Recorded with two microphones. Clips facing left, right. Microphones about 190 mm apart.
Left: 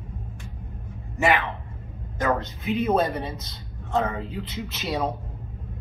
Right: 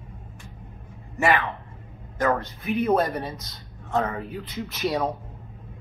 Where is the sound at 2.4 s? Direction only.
20° left (ahead or behind).